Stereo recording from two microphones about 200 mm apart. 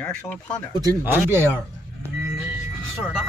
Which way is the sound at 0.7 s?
20° right (ahead or behind).